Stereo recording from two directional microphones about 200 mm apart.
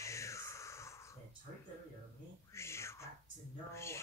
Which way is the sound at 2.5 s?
15° left (ahead or behind).